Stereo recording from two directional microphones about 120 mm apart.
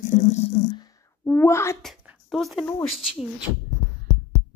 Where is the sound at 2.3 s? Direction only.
Centre (ahead or behind).